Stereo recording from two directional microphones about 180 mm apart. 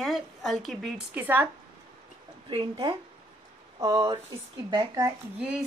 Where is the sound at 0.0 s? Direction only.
Centre (ahead or behind).